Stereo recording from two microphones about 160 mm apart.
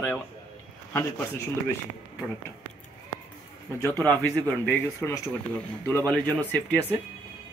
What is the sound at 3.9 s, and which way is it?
Speech, 10° left (ahead or behind).